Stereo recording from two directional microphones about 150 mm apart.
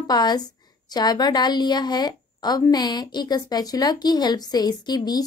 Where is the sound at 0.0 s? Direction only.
25° left (ahead or behind).